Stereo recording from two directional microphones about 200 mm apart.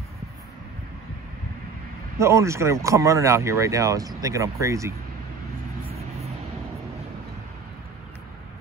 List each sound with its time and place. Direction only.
2.1 s speech: 15° right (ahead or behind)